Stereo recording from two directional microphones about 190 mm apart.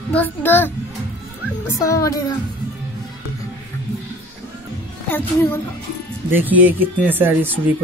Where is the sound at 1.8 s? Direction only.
15° left (ahead or behind).